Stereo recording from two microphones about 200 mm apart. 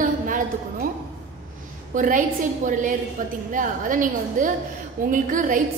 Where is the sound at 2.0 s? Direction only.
40° right (ahead or behind).